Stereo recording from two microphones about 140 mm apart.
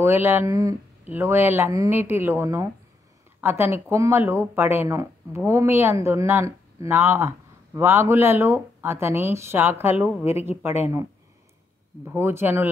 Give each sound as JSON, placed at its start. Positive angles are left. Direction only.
{"t": 0.0, "sound": "speech", "side_deg": -15}
{"t": 12.0, "sound": "speech", "side_deg": -15}